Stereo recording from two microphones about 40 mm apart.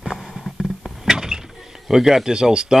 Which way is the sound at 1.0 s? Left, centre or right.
Centre.